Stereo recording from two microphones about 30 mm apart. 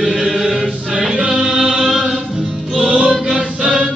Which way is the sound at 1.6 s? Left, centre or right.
Right.